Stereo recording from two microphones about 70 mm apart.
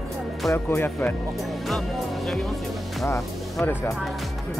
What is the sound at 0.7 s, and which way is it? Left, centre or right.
Speech, left.